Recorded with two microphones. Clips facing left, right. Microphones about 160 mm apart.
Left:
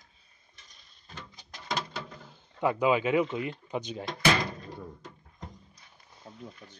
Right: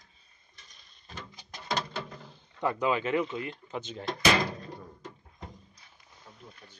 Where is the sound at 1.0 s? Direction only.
Centre (ahead or behind).